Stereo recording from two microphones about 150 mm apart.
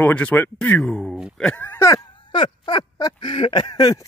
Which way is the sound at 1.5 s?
10° left (ahead or behind).